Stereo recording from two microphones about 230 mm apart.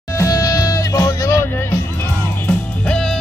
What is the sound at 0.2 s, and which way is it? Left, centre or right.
Music, centre.